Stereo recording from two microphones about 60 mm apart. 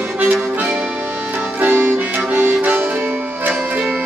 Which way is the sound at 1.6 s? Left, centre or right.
Right.